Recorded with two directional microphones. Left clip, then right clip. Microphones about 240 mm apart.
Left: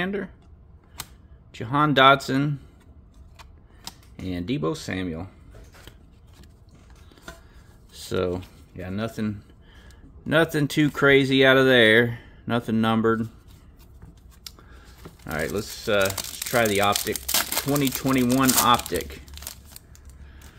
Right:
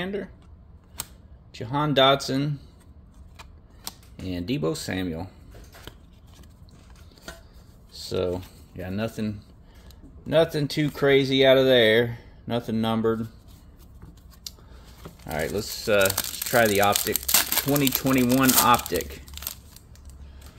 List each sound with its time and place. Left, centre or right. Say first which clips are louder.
0.0 s speech: left 3 dB; centre
1.5 s speech: left 4 dB; left
4.2 s speech: even; centre
5.9 s scissors: right 8 dB; centre
8.1 s speech: left 1 dB; centre
8.7 s speech: even; centre
10.2 s speech: even; left
14.5 s a sound: right 2 dB; centre
15.0 s speech: even; centre